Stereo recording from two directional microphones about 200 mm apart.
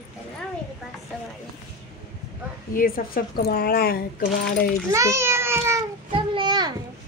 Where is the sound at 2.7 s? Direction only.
45° left (ahead or behind).